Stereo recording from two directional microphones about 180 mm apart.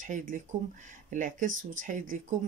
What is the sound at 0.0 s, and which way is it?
Speech, 45° right (ahead or behind).